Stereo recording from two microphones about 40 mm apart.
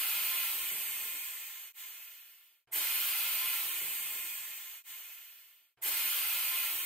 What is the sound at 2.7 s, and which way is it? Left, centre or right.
Steam, centre.